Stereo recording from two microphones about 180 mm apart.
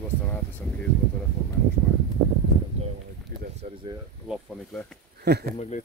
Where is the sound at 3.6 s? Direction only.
40° right (ahead or behind).